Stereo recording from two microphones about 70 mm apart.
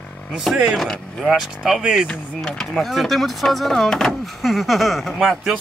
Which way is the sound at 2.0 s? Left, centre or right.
Centre.